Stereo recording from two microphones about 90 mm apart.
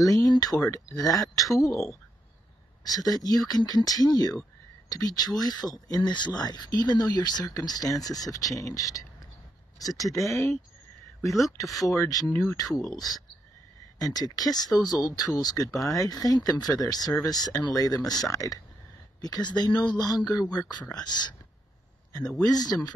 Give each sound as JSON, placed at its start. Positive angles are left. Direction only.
{"t": 0.0, "sound": "speech", "side_deg": 40}
{"t": 2.9, "sound": "speech", "side_deg": 45}
{"t": 11.9, "sound": "speech", "side_deg": 40}
{"t": 15.7, "sound": "speech", "side_deg": 0}
{"t": 16.0, "sound": "speech", "side_deg": 45}
{"t": 22.4, "sound": "speech", "side_deg": 45}